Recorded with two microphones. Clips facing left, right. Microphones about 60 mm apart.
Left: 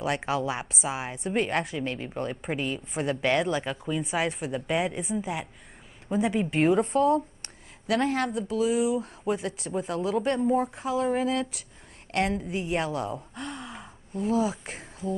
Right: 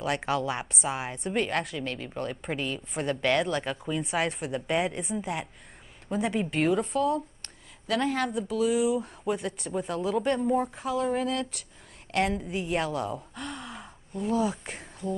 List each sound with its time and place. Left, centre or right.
0.0 s a woman's voice: centre
6.8 s speech: left
7.8 s a woman's voice: centre